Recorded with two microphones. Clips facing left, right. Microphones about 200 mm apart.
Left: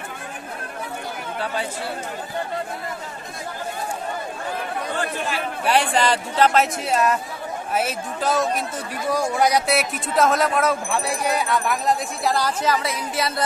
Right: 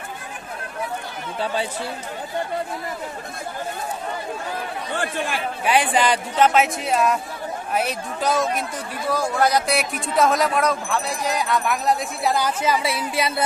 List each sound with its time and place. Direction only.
5.7 s speech: 5° right (ahead or behind)
9.1 s a man's voice: 15° left (ahead or behind)
9.7 s speech: centre (ahead or behind)
11.3 s speech: centre (ahead or behind)
12.6 s speech: 15° right (ahead or behind)